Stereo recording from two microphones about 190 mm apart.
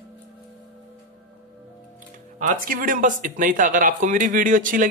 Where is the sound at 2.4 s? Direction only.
45° right (ahead or behind).